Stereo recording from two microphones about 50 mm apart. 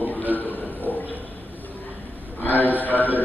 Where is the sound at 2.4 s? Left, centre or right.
Left.